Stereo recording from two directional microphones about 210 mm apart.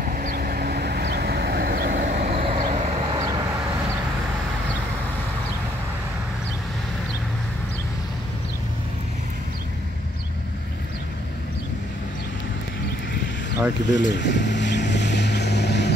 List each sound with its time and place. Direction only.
0.1 s vehicle: 40° right (ahead or behind)
13.8 s vehicle: 60° left (ahead or behind)